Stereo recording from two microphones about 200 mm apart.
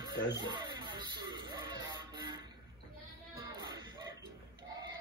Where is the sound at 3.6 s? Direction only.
20° right (ahead or behind).